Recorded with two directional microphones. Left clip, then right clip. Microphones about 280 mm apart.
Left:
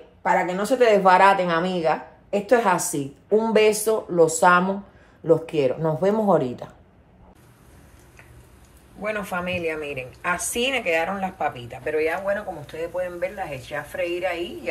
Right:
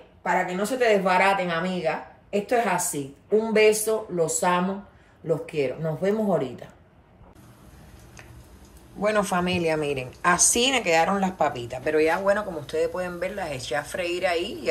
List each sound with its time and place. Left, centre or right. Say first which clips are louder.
0.5 s a woman's voice: left 5 dB; centre
9.3 s a woman's voice: right 2 dB; centre